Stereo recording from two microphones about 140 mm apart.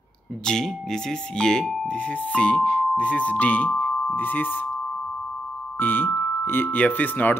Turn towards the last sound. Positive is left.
turn(degrees=10)  # may be behind; listen again after turning